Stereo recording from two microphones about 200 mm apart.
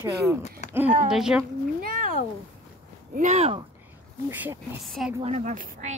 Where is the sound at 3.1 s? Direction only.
35° right (ahead or behind).